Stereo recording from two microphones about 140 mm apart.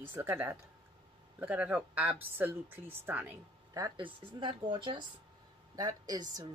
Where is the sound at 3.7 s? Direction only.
30° right (ahead or behind).